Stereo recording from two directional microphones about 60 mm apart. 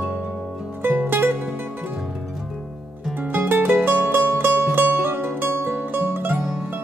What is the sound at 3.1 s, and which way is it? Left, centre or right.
Music, right.